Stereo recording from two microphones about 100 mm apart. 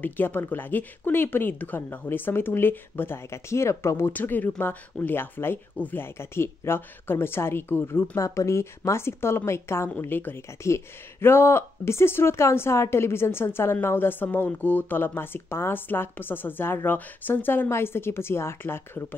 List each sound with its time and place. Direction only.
0.0 s speech: 20° left (ahead or behind)